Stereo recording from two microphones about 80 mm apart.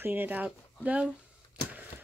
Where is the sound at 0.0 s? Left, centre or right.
Right.